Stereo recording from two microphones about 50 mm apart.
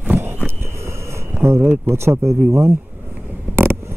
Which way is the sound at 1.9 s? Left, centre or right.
Right.